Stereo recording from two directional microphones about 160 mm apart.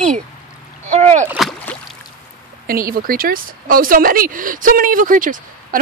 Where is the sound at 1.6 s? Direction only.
10° left (ahead or behind).